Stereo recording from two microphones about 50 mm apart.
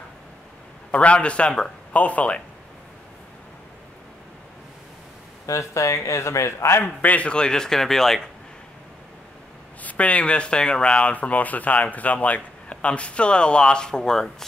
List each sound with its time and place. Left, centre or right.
0.9 s speech: left
5.5 s speech: left
6.8 s speech: left; by 8.2 s centre
9.8 s speech: left; by 14.3 s centre